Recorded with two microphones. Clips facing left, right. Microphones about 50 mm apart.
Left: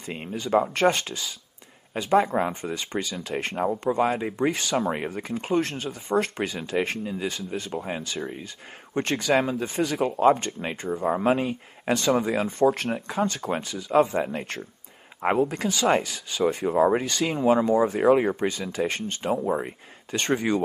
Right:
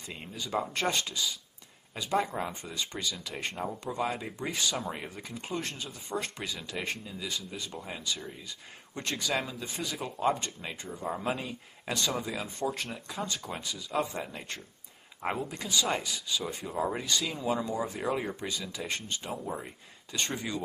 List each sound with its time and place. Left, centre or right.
0.0 s speech: left